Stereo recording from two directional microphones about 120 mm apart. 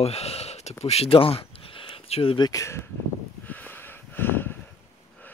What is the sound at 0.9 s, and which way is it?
Speech, 55° left (ahead or behind).